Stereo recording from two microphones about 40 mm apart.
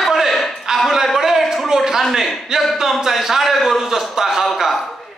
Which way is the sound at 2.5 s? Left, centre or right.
Centre.